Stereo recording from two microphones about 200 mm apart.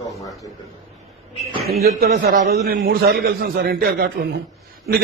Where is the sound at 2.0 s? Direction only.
50° right (ahead or behind).